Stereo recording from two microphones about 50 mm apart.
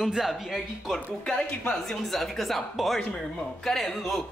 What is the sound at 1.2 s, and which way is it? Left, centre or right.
Speech, centre.